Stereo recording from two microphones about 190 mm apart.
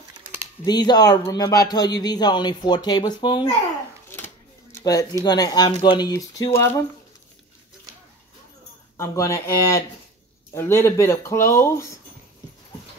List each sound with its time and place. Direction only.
0.7 s speech: 20° left (ahead or behind)
5.2 s speech: 20° left (ahead or behind)
8.9 s speech: 15° left (ahead or behind)